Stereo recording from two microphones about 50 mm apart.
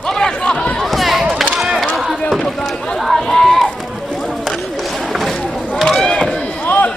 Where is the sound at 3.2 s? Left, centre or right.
Centre.